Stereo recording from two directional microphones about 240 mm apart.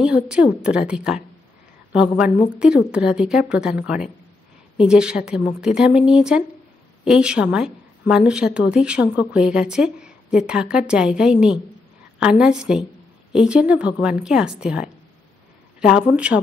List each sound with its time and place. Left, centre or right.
0.0 s a woman's voice: centre
16.3 s a woman's voice: centre